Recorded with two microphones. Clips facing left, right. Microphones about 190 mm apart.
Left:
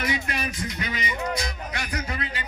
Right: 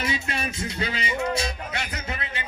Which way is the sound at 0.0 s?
25° right (ahead or behind).